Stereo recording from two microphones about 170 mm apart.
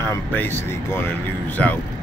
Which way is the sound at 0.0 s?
15° left (ahead or behind).